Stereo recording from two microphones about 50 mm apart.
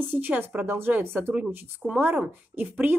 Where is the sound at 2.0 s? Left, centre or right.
Right.